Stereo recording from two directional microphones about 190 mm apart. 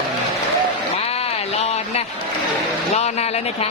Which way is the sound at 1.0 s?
30° left (ahead or behind).